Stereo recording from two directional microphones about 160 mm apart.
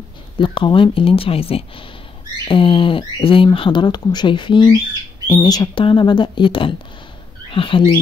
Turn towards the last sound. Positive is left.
turn(degrees=30)  # may be behind; listen again after turning